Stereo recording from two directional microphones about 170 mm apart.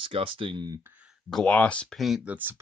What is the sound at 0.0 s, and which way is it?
Speech, 30° right (ahead or behind).